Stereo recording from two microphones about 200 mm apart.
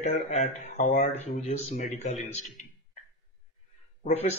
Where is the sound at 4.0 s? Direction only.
30° left (ahead or behind).